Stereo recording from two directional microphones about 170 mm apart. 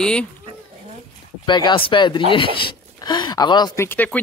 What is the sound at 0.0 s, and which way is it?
Speech, 5° left (ahead or behind).